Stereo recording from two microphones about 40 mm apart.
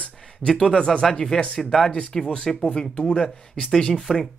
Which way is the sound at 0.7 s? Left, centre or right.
Centre.